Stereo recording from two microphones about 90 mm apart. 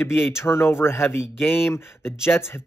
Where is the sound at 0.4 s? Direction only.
30° left (ahead or behind).